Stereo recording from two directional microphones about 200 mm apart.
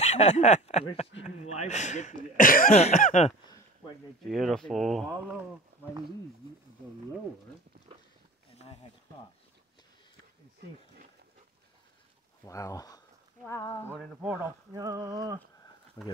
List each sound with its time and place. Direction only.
0.0 s speech: 35° left (ahead or behind)
4.3 s speech: centre (ahead or behind)
8.5 s a sound: 30° left (ahead or behind)
12.4 s speech: 15° left (ahead or behind)
13.9 s speech: 5° right (ahead or behind)
14.7 s a sound: 15° right (ahead or behind)
16.0 s speech: 25° left (ahead or behind)